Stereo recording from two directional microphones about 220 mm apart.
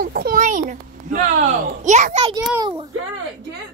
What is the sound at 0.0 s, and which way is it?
A child's voice, 40° right (ahead or behind).